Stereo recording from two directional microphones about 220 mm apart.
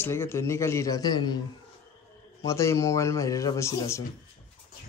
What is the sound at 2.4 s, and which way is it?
Speech, 15° left (ahead or behind).